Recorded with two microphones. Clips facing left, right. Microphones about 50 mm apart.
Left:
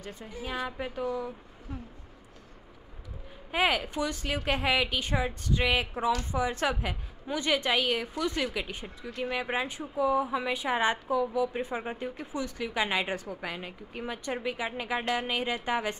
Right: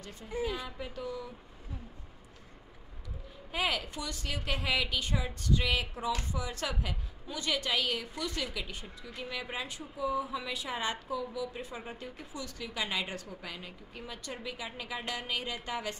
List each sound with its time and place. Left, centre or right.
0.4 s a woman's voice: left
3.5 s a woman's voice: left